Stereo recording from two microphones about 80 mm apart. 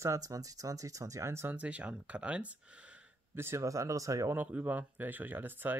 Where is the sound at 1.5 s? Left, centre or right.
Centre.